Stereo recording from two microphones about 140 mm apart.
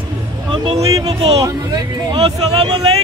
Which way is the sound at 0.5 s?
35° right (ahead or behind).